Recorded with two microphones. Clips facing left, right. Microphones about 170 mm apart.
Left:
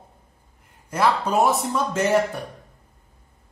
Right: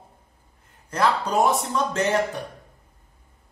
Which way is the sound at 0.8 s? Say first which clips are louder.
Left 1 dB; 10° left (ahead or behind).